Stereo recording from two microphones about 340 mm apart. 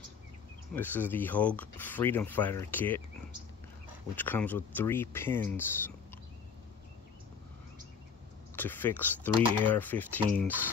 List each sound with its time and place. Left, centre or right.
0.7 s speech: centre
4.1 s speech: centre
8.5 s speech: centre